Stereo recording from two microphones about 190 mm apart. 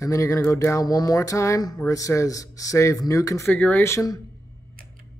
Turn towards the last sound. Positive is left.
turn(degrees=15)  # may be behind; listen again after turning